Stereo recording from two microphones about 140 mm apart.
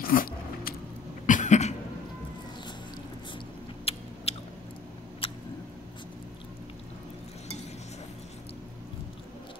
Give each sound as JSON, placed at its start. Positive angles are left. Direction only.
{"t": 0.0, "sound": "biting", "side_deg": 90}
{"t": 1.2, "sound": "cough", "side_deg": 65}
{"t": 3.9, "sound": "rodents", "side_deg": 45}
{"t": 4.3, "sound": "biting", "side_deg": 45}
{"t": 5.2, "sound": "a sound", "side_deg": 40}